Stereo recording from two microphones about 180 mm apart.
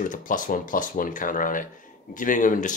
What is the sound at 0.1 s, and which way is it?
Speech, 45° left (ahead or behind).